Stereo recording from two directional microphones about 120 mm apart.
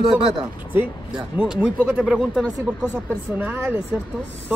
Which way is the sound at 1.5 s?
10° right (ahead or behind).